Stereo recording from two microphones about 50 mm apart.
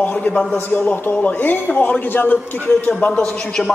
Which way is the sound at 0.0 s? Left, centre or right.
Left.